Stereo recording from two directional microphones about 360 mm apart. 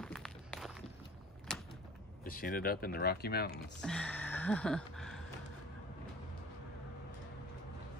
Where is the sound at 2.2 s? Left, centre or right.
Left.